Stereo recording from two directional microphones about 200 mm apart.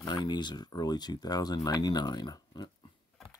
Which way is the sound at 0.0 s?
20° left (ahead or behind).